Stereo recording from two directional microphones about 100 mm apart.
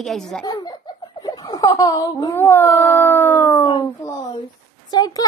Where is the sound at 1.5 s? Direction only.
40° left (ahead or behind).